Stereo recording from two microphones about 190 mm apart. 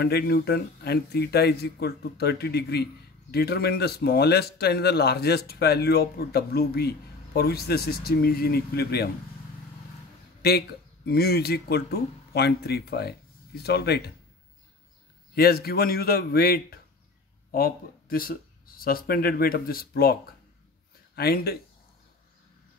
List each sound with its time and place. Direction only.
0.0 s speech: 55° left (ahead or behind)
10.4 s speech: 55° left (ahead or behind)
15.3 s a man's voice: 55° left (ahead or behind)